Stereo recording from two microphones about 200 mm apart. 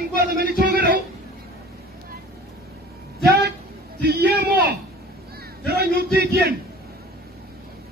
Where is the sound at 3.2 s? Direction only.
50° right (ahead or behind).